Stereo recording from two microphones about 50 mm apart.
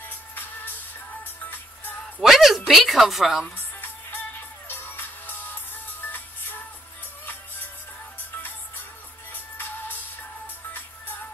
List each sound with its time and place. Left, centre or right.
0.0 s music: left
2.1 s music: centre
3.5 s music: left
8.2 s music: left